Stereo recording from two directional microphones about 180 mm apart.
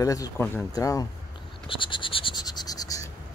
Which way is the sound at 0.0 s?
20° left (ahead or behind).